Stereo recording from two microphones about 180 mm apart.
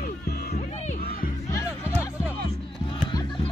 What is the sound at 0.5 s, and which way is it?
Crowd, 40° left (ahead or behind).